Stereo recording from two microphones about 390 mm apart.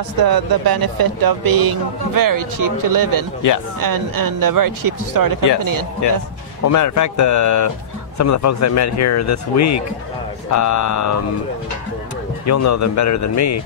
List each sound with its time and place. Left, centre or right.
0.2 s speech: right
6.0 s speech: left
12.4 s speech: left